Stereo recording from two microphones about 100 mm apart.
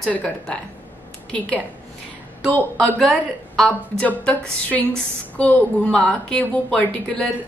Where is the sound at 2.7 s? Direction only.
Centre (ahead or behind).